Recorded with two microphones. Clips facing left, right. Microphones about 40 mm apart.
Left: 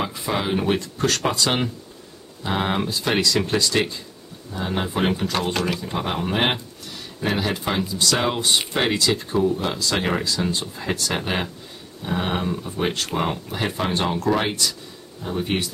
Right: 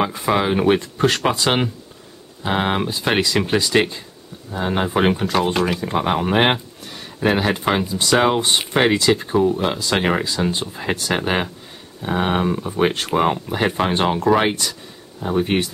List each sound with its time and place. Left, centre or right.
0.0 s speech: right
5.1 s speech: centre